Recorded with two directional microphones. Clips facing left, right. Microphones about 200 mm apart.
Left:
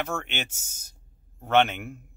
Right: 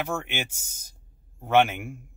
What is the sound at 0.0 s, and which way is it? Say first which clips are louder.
Speech: right 1 dB; 10° right (ahead or behind).